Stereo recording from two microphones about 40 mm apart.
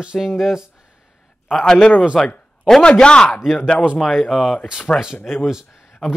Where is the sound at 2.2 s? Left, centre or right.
Centre.